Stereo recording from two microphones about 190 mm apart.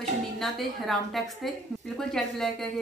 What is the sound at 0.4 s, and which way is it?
A woman's voice, centre (ahead or behind).